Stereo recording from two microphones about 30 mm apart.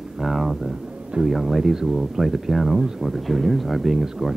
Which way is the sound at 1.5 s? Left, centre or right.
Centre.